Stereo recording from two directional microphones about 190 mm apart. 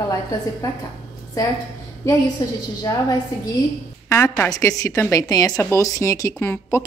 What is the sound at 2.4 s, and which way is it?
Speech, 20° left (ahead or behind).